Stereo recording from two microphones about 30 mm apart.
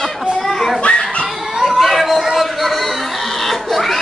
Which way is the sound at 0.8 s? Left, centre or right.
Left.